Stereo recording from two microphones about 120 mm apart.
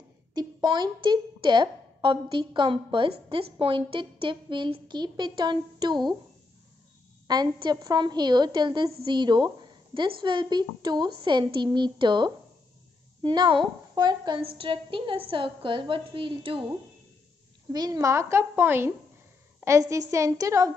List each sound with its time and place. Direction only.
0.3 s a woman's voice: 35° right (ahead or behind)
7.2 s a woman's voice: 35° right (ahead or behind)
17.7 s a woman's voice: 30° right (ahead or behind)